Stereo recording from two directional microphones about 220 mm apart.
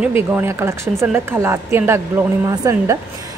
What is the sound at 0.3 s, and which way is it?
A woman's voice, 10° right (ahead or behind).